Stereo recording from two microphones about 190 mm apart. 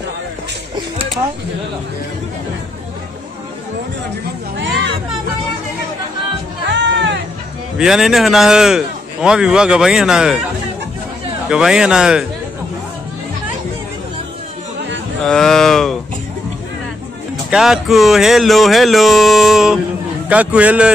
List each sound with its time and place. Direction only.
6.7 s music: 70° right (ahead or behind)
7.7 s a man's voice: 5° right (ahead or behind)
11.4 s a man's voice: 5° right (ahead or behind)
15.2 s a man's voice: centre (ahead or behind)
17.5 s a man's voice: centre (ahead or behind)